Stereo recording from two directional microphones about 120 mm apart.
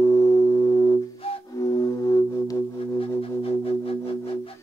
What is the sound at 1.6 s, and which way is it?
Music, 25° left (ahead or behind).